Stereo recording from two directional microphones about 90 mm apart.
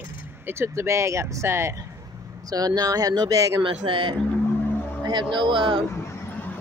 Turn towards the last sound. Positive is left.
turn(degrees=20)  # may be behind; listen again after turning